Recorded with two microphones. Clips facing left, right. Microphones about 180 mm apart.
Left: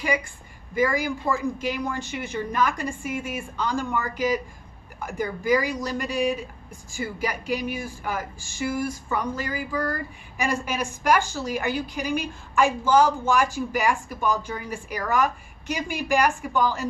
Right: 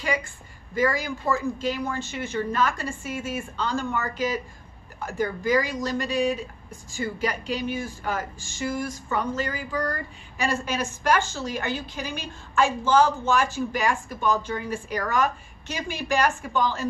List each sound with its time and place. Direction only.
0.7 s speech: 15° left (ahead or behind)